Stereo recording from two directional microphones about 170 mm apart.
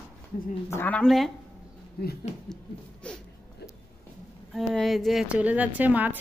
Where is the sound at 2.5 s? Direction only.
5° left (ahead or behind).